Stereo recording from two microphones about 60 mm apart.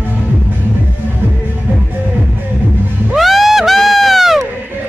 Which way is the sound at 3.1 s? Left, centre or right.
Centre.